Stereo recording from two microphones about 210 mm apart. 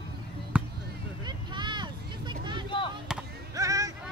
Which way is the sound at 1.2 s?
20° right (ahead or behind).